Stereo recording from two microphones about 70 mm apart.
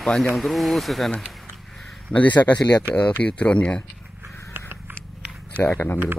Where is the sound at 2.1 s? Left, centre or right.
Left.